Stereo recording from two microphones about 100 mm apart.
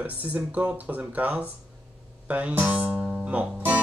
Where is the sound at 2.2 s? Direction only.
15° right (ahead or behind).